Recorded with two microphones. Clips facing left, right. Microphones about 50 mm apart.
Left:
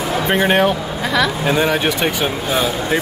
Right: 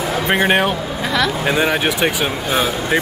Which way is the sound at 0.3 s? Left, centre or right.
Centre.